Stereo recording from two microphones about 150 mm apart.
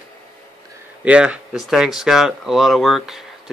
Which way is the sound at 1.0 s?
10° right (ahead or behind).